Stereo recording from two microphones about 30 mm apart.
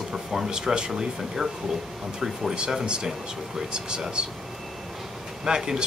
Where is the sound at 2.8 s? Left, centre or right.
Right.